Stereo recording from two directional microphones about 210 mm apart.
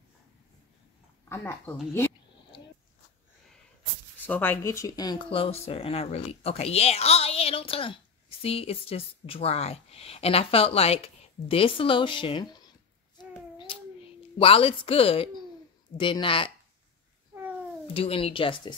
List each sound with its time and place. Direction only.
1.3 s speech: 10° left (ahead or behind)
4.3 s speech: 10° left (ahead or behind)
13.6 s a sound: 25° left (ahead or behind)
16.0 s speech: 25° left (ahead or behind)
17.8 s speech: 25° left (ahead or behind)